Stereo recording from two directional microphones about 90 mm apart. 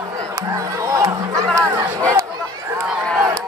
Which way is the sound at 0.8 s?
35° right (ahead or behind).